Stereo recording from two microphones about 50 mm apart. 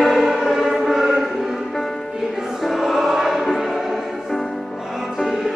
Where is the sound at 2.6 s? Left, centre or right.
Centre.